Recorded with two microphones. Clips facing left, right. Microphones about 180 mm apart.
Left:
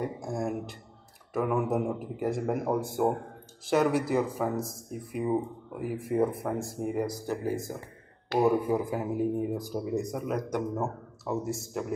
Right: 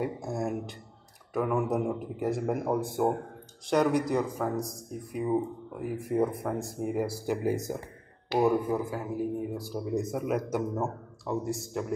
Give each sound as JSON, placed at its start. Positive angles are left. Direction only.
{"t": 0.0, "sound": "speech", "side_deg": -5}
{"t": 7.2, "sound": "speech", "side_deg": -15}
{"t": 8.4, "sound": "speech", "side_deg": 0}
{"t": 8.7, "sound": "a man's voice", "side_deg": 20}
{"t": 9.8, "sound": "speech", "side_deg": 0}